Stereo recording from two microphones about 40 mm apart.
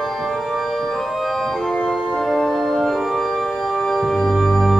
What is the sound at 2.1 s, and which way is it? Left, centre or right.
Music, centre.